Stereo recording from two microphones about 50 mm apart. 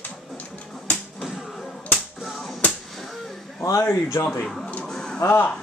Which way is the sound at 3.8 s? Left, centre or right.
Left.